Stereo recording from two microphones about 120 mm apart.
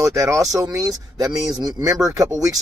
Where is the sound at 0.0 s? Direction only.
25° right (ahead or behind).